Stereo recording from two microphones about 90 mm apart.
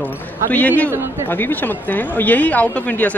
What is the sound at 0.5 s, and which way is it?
A man's voice, 15° left (ahead or behind).